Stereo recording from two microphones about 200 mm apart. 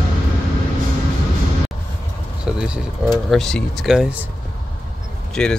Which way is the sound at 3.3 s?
Centre (ahead or behind).